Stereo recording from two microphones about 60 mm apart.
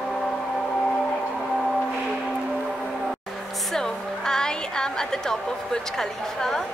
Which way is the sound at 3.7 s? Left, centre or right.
Centre.